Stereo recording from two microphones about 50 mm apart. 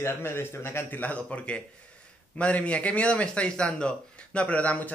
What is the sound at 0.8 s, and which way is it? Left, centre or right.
A man's voice, left.